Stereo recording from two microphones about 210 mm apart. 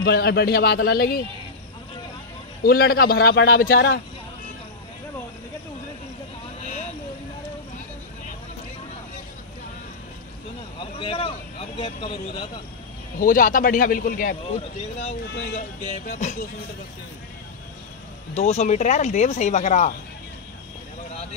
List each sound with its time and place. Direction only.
0.0 s a man's voice: 50° left (ahead or behind)
2.6 s a man's voice: 45° left (ahead or behind)
6.6 s a sound: 35° left (ahead or behind)
10.8 s speech: 25° left (ahead or behind)
13.2 s a man's voice: 40° left (ahead or behind)
15.3 s a man's voice: 45° left (ahead or behind)
18.3 s a man's voice: 30° left (ahead or behind)